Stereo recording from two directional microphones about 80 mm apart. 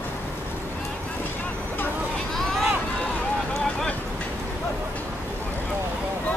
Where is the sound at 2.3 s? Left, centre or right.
Centre.